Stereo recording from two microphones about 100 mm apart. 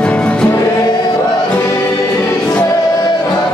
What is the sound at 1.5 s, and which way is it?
Music, 25° left (ahead or behind).